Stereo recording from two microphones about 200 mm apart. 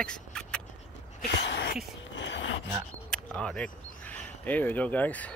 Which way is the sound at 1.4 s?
65° left (ahead or behind).